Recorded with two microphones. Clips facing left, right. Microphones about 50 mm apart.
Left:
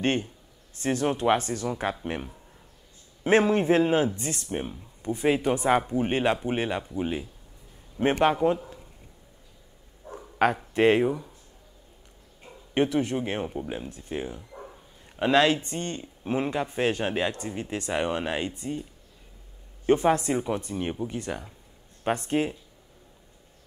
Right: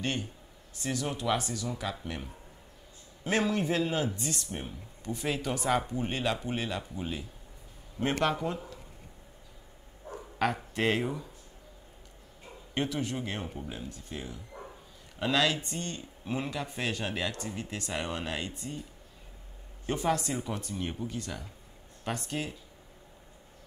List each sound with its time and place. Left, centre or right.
0.0 s a man's voice: left
10.1 s bow-wow: left
12.7 s speech: left
14.5 s bow-wow: centre
15.1 s speech: left
19.9 s a man's voice: left